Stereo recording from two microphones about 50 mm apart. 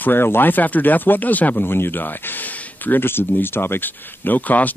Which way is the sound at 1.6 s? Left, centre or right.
Left.